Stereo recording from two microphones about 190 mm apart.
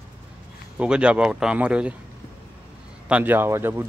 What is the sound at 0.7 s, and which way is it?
Speech, 5° right (ahead or behind).